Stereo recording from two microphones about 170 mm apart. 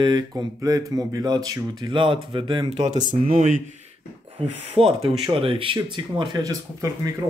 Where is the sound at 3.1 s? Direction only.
50° right (ahead or behind).